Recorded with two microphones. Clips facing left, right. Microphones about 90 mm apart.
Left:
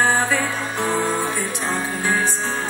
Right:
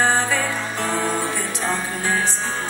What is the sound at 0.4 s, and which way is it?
Music, 20° left (ahead or behind).